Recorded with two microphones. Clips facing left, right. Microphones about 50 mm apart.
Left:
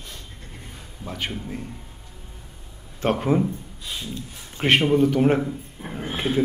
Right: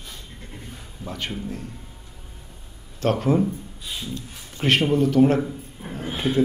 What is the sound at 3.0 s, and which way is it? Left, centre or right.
Speech, centre.